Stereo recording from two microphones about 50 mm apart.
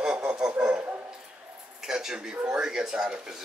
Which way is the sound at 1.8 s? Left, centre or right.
Centre.